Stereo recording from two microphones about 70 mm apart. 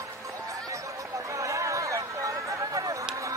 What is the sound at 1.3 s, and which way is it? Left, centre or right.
Chatter, right.